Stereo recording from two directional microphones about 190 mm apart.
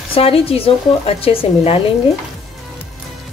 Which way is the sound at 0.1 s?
30° left (ahead or behind).